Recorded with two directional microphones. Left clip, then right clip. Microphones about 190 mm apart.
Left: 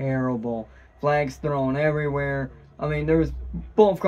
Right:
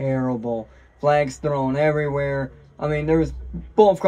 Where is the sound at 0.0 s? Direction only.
15° left (ahead or behind).